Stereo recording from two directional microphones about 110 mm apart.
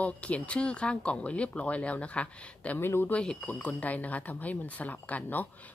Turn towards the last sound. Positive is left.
turn(degrees=15)  # may be behind; listen again after turning